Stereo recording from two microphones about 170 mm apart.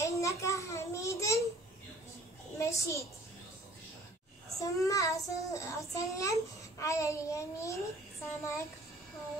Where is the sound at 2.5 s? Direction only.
15° left (ahead or behind).